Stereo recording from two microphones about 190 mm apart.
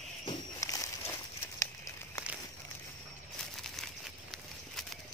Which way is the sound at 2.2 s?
15° left (ahead or behind).